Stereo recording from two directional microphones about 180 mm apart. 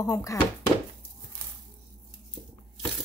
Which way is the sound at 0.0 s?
20° left (ahead or behind).